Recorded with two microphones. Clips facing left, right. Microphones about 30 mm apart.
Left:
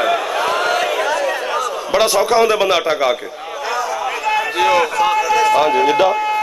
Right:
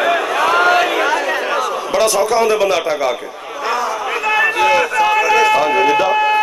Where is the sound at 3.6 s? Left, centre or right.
Centre.